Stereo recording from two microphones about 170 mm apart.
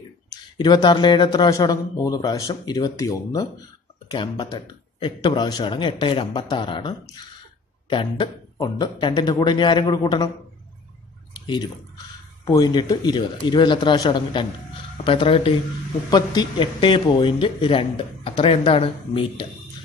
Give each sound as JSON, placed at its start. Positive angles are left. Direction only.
{"t": 0.6, "sound": "speech", "side_deg": 25}
{"t": 11.3, "sound": "fowl", "side_deg": 25}
{"t": 12.4, "sound": "speech", "side_deg": 25}